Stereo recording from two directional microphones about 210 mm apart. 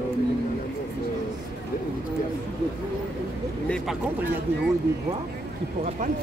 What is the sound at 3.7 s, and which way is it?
Speech, 5° left (ahead or behind).